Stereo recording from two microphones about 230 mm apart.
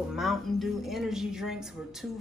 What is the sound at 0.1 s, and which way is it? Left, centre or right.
Speech, centre.